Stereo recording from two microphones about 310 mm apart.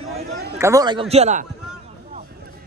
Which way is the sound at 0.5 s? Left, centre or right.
Centre.